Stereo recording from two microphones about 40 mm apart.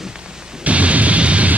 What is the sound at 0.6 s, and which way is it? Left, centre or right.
Music, right.